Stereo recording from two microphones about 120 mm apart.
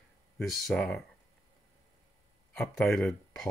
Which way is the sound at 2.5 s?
5° left (ahead or behind).